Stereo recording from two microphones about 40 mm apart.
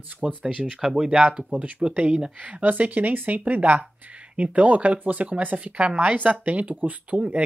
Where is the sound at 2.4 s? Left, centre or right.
Right.